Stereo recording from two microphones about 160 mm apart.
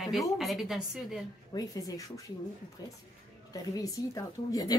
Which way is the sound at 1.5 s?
25° left (ahead or behind).